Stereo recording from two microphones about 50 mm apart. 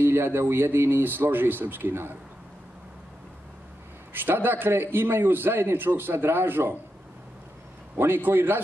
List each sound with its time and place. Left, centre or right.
0.0 s a man's voice: right
4.1 s a man's voice: right
8.0 s a man's voice: right